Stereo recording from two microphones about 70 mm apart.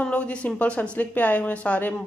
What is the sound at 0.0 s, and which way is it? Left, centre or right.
Speech, centre.